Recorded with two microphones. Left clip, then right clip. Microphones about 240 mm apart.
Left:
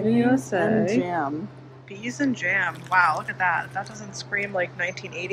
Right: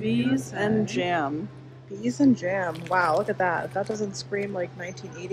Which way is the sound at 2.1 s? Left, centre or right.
Centre.